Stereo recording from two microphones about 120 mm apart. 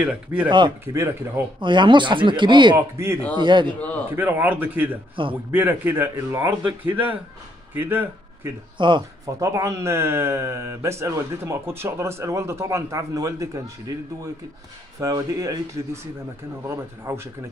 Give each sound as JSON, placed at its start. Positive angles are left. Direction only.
{"t": 0.0, "sound": "speech", "side_deg": -10}
{"t": 0.5, "sound": "speech", "side_deg": -40}
{"t": 0.8, "sound": "speech", "side_deg": -20}
{"t": 1.6, "sound": "speech", "side_deg": -40}
{"t": 2.7, "sound": "speech", "side_deg": -20}
{"t": 3.3, "sound": "speech", "side_deg": -40}
{"t": 4.1, "sound": "speech", "side_deg": -20}
{"t": 8.7, "sound": "speech", "side_deg": -40}
{"t": 9.2, "sound": "speech", "side_deg": -25}